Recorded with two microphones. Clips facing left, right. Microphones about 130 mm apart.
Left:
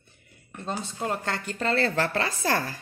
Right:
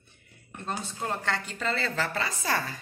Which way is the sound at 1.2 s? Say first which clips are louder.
Left 2 dB; 50° left (ahead or behind).